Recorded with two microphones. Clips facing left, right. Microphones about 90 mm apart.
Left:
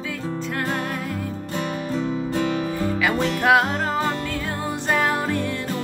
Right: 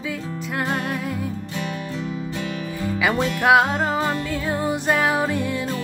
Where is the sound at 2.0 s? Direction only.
35° left (ahead or behind).